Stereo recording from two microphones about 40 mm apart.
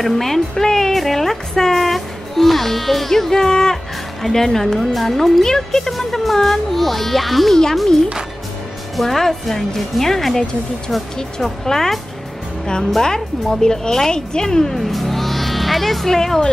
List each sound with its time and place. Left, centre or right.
0.0 s speech: centre
5.9 s speech: centre
9.0 s speech: centre
14.8 s speech: centre